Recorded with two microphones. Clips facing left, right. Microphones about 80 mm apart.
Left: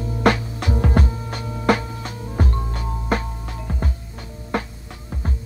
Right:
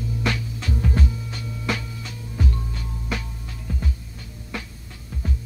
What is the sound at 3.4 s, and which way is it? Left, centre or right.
Music, left.